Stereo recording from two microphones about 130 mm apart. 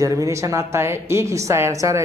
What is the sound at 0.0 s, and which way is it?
A woman's voice, 25° right (ahead or behind).